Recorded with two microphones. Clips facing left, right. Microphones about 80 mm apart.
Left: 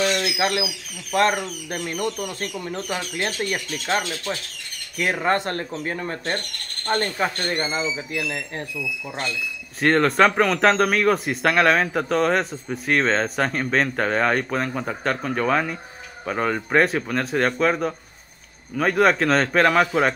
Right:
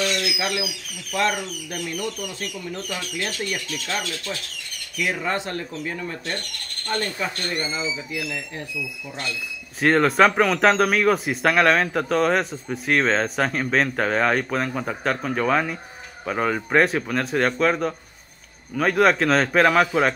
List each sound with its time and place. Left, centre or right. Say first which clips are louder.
0.0 s bird: left 3 dB; left
0.4 s speech: left 3 dB; left
4.9 s speech: left 3 dB; left
9.8 s speech: even; centre